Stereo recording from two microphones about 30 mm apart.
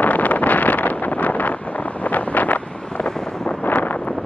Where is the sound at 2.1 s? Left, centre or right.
Left.